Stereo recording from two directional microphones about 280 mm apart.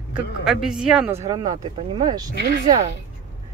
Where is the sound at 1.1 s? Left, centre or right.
Centre.